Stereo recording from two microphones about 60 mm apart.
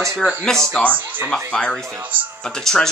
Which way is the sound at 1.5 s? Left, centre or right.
Centre.